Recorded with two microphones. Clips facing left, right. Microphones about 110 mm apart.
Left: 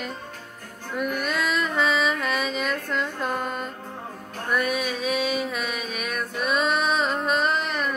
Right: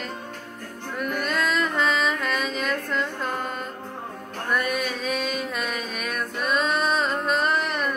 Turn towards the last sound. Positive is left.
turn(degrees=0)  # may be behind; listen again after turning